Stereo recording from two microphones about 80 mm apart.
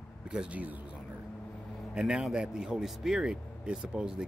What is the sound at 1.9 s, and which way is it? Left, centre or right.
Speech, centre.